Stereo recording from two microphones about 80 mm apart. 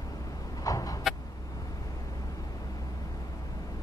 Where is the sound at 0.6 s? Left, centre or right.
Left.